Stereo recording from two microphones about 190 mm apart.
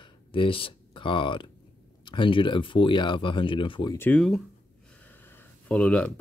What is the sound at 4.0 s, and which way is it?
Speech, 5° left (ahead or behind).